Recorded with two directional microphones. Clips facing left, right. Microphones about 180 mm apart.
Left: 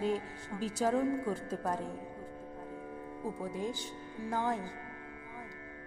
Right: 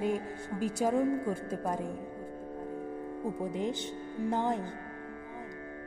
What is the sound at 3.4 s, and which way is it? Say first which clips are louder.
Speech: right 4 dB; 20° right (ahead or behind).